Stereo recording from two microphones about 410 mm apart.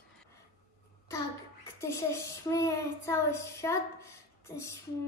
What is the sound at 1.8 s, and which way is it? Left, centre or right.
Speech, centre.